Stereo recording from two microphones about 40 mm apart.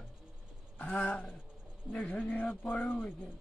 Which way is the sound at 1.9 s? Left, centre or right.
Centre.